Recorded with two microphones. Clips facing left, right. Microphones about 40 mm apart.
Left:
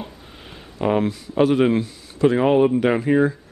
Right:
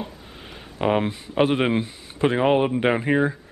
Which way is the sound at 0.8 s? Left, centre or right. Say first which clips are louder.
Left 2 dB; right.